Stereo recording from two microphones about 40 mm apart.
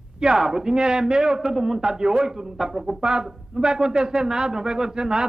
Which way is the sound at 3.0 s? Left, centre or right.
Centre.